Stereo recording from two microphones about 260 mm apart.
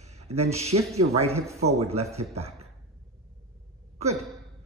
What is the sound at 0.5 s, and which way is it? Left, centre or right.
Speech, right.